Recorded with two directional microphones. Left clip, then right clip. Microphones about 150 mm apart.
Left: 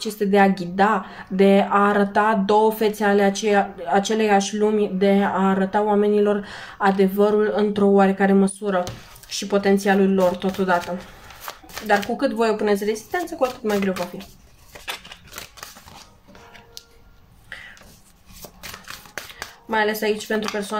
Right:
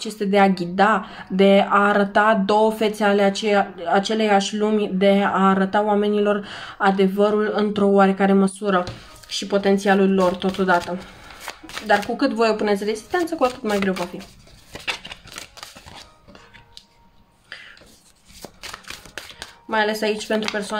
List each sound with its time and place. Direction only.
0.0 s speech: 20° right (ahead or behind)
14.7 s a sound: 40° right (ahead or behind)
19.7 s speech: 25° right (ahead or behind)